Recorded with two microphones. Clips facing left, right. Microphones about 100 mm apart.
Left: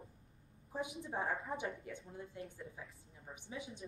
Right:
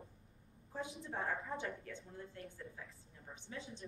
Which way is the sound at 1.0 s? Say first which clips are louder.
Left 1 dB; 15° left (ahead or behind).